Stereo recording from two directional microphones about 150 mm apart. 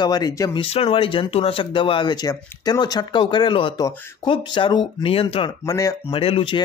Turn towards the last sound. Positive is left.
turn(degrees=35)  # may be behind; listen again after turning